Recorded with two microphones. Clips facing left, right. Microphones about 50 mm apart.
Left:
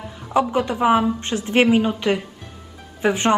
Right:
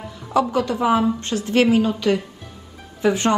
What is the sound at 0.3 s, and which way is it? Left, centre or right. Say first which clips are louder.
A woman's voice: even; left.